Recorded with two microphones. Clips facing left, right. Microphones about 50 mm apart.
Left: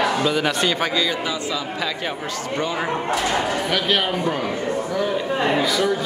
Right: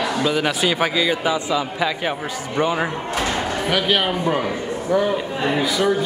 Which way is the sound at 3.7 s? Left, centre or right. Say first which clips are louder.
Right 2 dB; centre.